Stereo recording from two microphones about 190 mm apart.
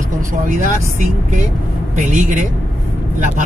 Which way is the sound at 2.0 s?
40° right (ahead or behind).